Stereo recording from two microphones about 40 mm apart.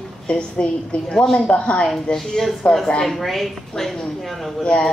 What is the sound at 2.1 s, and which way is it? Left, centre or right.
Speech, centre.